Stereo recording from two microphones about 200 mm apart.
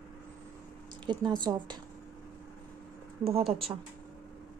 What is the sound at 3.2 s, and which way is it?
Speech, 30° right (ahead or behind).